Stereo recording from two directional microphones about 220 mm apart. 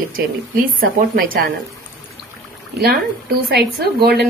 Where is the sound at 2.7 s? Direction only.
45° right (ahead or behind).